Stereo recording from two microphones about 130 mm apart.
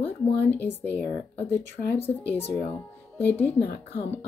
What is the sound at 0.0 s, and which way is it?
Speech, 15° left (ahead or behind).